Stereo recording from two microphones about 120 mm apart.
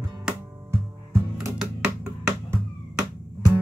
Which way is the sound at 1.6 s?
5° right (ahead or behind).